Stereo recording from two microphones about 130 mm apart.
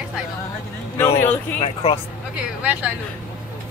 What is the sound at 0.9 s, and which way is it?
Speech, 20° left (ahead or behind).